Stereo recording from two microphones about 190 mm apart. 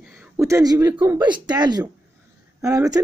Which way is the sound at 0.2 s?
15° right (ahead or behind).